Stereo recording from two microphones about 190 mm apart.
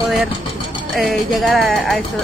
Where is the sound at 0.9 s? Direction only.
Centre (ahead or behind).